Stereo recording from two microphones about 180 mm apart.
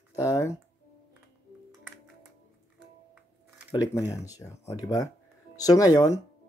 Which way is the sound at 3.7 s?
20° left (ahead or behind).